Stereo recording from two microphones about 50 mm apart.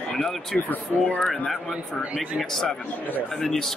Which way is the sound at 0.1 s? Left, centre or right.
Centre.